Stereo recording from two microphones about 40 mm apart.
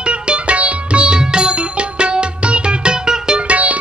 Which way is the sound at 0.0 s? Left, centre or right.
Right.